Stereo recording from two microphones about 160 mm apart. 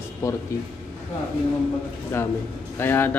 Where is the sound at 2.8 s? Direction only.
15° left (ahead or behind).